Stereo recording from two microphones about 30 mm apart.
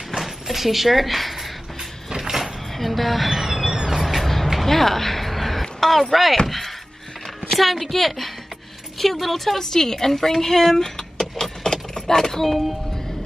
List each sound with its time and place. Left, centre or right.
0.1 s door: centre
2.0 s a sound: centre
2.4 s cat: centre
3.7 s vehicle: right
4.0 s vehicle: centre
4.6 s a sound: centre
6.4 s a woman's voice: centre
11.7 s keys jangling: left